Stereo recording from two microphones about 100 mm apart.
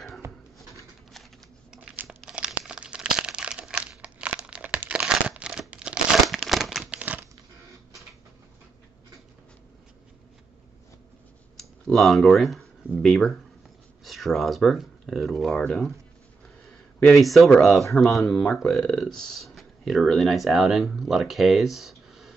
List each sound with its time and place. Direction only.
2.0 s crumpling: 5° right (ahead or behind)
11.5 s a sound: centre (ahead or behind)
14.0 s speech: centre (ahead or behind)
17.0 s speech: centre (ahead or behind)